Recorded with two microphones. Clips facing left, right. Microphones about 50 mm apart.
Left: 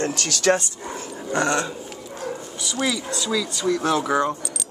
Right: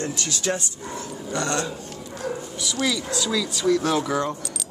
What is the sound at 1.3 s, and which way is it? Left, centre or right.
Speech, left.